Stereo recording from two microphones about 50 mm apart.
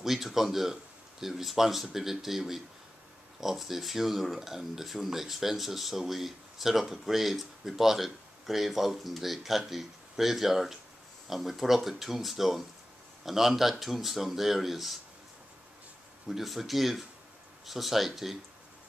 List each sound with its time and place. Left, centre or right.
0.0 s speech: centre
16.3 s speech: centre